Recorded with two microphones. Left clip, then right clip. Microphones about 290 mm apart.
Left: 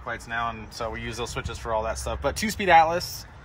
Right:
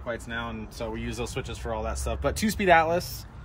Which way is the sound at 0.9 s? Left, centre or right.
Centre.